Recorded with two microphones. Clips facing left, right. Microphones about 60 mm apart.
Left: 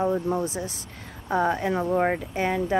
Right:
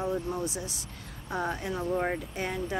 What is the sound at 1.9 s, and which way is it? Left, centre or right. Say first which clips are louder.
Speech: left 6 dB; left.